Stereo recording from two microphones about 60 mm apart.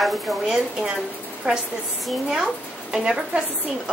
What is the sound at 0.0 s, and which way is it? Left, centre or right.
Speech, centre.